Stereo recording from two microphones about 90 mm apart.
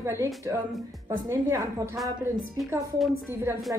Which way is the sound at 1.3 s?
40° right (ahead or behind).